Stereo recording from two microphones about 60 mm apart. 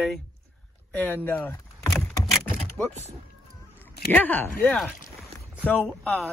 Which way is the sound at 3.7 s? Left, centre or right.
Left.